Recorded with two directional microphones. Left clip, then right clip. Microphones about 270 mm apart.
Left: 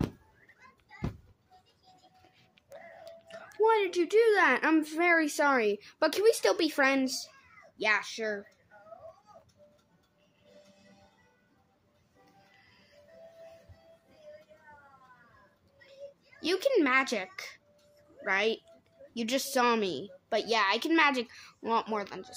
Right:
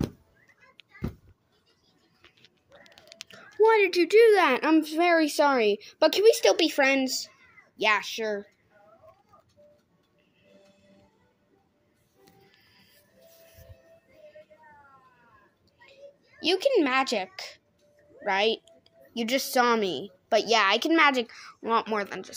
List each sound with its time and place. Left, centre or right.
3.2 s speech: centre
15.9 s a sound: centre
18.2 s speech: centre